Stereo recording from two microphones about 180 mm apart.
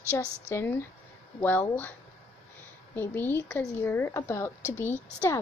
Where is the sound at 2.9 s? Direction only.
10° left (ahead or behind).